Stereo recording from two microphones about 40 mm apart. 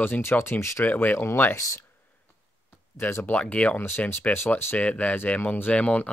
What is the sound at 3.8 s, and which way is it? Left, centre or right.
Speech, left.